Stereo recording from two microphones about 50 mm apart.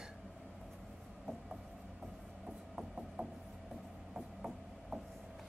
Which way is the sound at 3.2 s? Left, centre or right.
Right.